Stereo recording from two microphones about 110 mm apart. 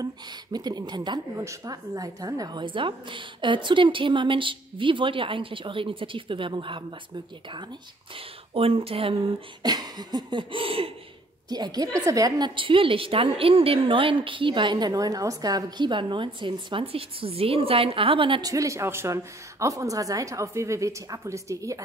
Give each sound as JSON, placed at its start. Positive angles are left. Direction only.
{"t": 0.0, "sound": "a woman's voice", "side_deg": -35}
{"t": 1.3, "sound": "a woman's voice", "side_deg": -30}
{"t": 2.6, "sound": "a woman's voice", "side_deg": -50}
{"t": 8.5, "sound": "speech", "side_deg": -60}
{"t": 11.4, "sound": "a woman's voice", "side_deg": -40}
{"t": 18.4, "sound": "a woman's voice", "side_deg": -30}